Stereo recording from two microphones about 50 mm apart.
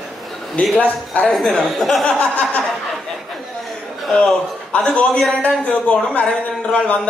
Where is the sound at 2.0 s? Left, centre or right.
Left.